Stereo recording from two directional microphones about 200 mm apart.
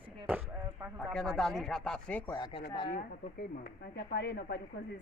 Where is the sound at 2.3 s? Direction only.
20° left (ahead or behind).